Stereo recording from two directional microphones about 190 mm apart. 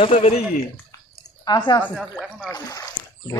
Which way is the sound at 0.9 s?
20° left (ahead or behind).